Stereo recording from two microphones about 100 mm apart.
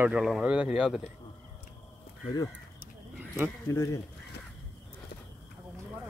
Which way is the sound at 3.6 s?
35° left (ahead or behind).